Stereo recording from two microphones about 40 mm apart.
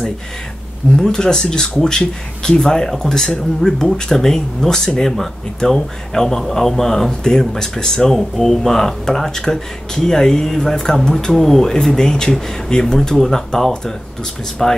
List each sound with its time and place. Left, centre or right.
0.9 s speech: centre